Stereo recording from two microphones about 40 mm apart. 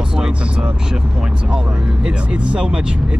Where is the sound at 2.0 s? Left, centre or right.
Right.